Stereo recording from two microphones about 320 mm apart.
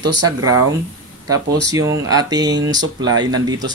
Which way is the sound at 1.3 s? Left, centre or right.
Centre.